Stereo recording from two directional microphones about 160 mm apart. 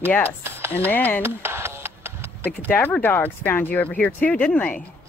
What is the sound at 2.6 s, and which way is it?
Speech, 10° left (ahead or behind).